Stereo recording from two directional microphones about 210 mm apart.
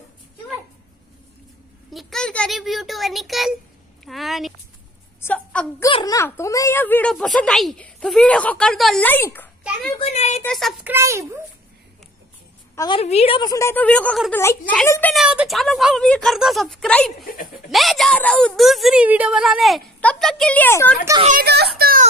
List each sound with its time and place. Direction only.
2.0 s a child's voice: centre (ahead or behind)
5.9 s a woman's voice: 25° left (ahead or behind)
6.1 s speech: 15° left (ahead or behind)
9.6 s a sound: centre (ahead or behind)
9.9 s speech: 30° left (ahead or behind)
10.4 s speech: centre (ahead or behind)
10.9 s a child's voice: 15° right (ahead or behind)
12.7 s a woman's voice: 20° left (ahead or behind)
13.0 s speech: 30° left (ahead or behind); by 15.2 s 10° left (ahead or behind)
15.2 s speech: centre (ahead or behind)
21.2 s speech: 35° right (ahead or behind)
21.5 s a child's voice: 50° right (ahead or behind)